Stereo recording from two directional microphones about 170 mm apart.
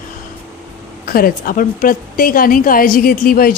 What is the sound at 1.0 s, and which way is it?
A woman's voice, 60° left (ahead or behind).